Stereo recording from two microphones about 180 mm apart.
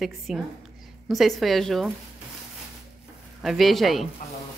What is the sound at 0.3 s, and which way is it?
A woman's voice, centre (ahead or behind).